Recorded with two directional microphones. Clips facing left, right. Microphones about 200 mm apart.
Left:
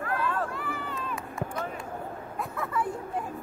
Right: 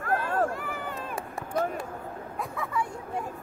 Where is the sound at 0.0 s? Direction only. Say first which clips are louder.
Right 3 dB; 45° right (ahead or behind).